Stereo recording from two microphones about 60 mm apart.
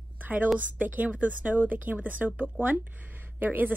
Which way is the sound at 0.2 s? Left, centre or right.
Right.